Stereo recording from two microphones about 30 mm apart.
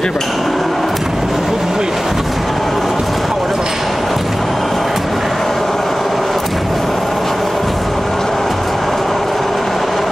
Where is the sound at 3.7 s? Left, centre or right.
Centre.